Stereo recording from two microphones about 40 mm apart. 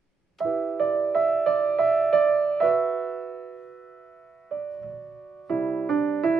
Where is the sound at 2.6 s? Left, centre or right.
Centre.